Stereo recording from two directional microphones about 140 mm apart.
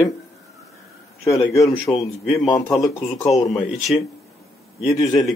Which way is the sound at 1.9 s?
25° left (ahead or behind).